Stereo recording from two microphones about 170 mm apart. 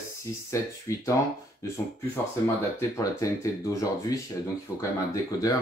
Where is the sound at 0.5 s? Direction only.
20° left (ahead or behind).